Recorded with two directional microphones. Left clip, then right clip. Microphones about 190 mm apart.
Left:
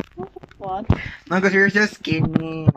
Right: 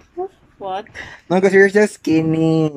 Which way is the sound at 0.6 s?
10° right (ahead or behind).